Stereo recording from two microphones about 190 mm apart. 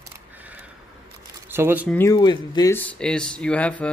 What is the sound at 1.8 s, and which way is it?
Speech, 10° left (ahead or behind).